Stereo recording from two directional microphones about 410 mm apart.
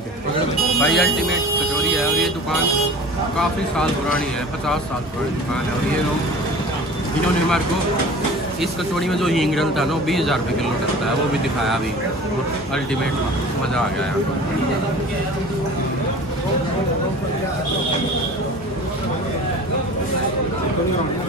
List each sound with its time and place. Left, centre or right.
0.7 s speech: centre
8.9 s speech: centre